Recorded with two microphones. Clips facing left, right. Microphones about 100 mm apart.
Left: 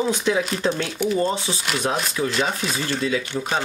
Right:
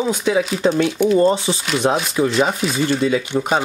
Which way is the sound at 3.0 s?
20° right (ahead or behind).